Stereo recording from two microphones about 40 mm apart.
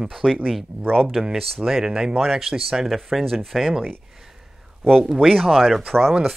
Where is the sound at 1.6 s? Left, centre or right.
Centre.